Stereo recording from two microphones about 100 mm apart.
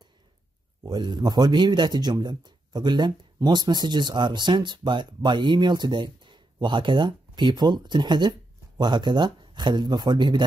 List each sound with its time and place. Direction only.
0.8 s speech: 45° right (ahead or behind)